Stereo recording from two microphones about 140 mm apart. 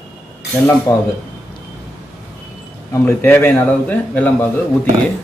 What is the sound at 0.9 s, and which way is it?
Speech, 25° left (ahead or behind).